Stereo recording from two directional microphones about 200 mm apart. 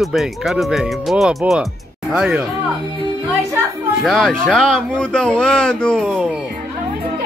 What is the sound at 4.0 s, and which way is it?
Speech, centre (ahead or behind).